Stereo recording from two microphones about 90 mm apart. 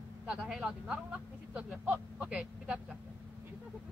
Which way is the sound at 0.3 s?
10° right (ahead or behind).